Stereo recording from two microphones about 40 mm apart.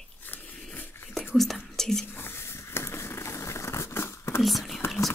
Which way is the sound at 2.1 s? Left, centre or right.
Left.